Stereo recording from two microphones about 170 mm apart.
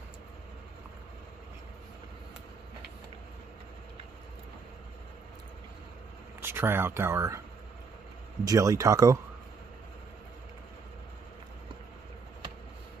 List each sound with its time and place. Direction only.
6.4 s speech: 15° right (ahead or behind)
8.5 s speech: 20° right (ahead or behind)